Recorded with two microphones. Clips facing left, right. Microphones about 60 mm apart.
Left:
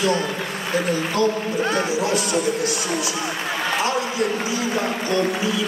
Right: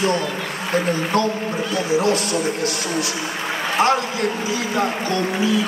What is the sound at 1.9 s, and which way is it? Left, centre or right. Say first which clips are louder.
Speech: right 2 dB; right.